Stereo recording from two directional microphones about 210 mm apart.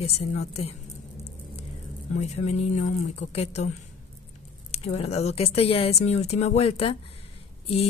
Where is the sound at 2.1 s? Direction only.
30° left (ahead or behind).